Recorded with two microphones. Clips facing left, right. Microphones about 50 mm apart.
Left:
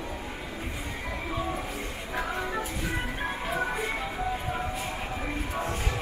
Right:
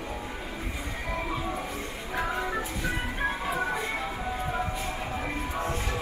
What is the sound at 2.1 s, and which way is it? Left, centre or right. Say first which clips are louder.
Music: right 1 dB; centre.